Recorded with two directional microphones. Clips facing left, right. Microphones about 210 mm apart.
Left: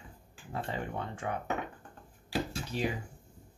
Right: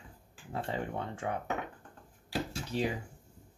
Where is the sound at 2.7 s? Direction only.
25° right (ahead or behind).